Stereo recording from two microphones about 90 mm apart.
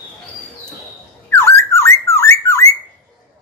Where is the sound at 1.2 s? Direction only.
30° left (ahead or behind).